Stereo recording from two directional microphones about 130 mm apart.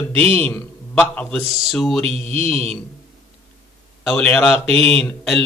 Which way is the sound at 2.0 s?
50° right (ahead or behind).